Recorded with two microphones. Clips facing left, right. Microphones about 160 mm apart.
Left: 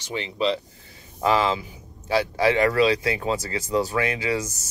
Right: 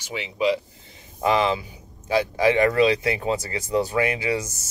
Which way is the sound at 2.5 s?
20° right (ahead or behind).